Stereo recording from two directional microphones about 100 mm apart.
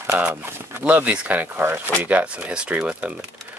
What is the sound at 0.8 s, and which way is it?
Speech, 15° right (ahead or behind).